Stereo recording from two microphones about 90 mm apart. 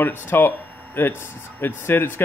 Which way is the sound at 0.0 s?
25° left (ahead or behind).